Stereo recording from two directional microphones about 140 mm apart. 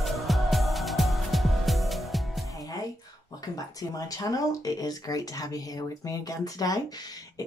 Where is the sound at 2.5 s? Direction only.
25° left (ahead or behind).